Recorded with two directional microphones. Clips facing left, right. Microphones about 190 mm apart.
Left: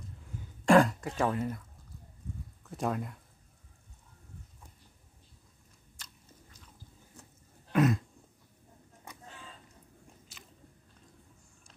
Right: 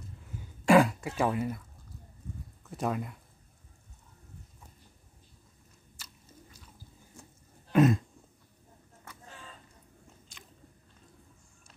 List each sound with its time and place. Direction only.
0.7 s speech: 5° right (ahead or behind)
2.7 s speech: centre (ahead or behind)
5.9 s biting: 5° right (ahead or behind)
7.7 s throat clearing: 25° right (ahead or behind)
9.1 s a sound: 15° left (ahead or behind)
10.3 s biting: 5° left (ahead or behind)